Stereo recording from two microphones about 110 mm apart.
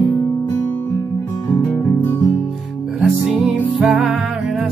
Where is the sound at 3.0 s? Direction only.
5° right (ahead or behind).